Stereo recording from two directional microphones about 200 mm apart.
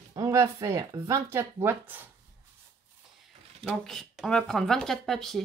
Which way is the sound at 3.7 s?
Centre (ahead or behind).